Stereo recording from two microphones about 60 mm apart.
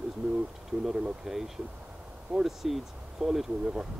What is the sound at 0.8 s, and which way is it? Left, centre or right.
Speech, centre.